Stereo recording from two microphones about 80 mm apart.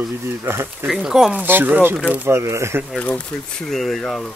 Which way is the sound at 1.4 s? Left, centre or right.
Right.